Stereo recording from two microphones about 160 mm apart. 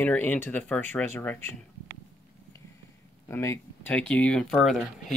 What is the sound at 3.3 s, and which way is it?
Speech, 15° left (ahead or behind).